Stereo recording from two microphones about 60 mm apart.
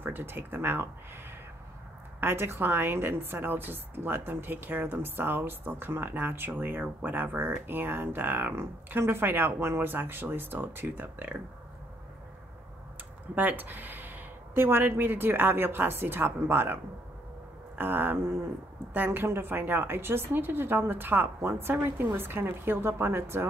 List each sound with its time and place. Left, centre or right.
0.0 s a woman's voice: right
2.1 s a woman's voice: right
13.3 s a woman's voice: right